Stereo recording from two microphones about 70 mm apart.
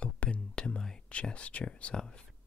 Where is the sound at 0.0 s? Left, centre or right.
Centre.